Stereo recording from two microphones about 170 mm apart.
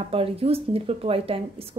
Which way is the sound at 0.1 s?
35° right (ahead or behind).